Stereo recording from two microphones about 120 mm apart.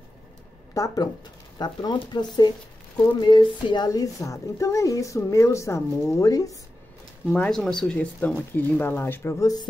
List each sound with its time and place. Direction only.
0.7 s speech: 30° left (ahead or behind)
7.2 s speech: 5° left (ahead or behind); by 9.7 s 30° left (ahead or behind)